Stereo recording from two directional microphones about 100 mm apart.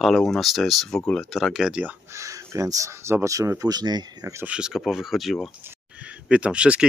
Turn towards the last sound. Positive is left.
turn(degrees=-10)  # may be behind; listen again after turning